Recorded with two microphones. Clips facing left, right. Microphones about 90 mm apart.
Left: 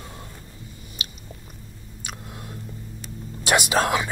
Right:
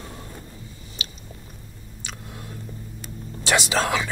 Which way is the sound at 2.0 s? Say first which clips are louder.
Left 1 dB; 20° left (ahead or behind).